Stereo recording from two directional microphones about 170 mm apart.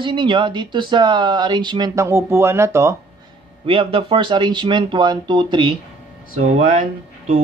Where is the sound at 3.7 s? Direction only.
30° right (ahead or behind).